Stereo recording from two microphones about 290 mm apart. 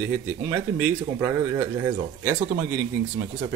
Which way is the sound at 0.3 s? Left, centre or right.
Centre.